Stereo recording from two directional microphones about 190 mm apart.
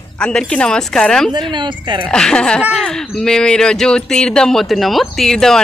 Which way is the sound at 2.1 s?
5° left (ahead or behind).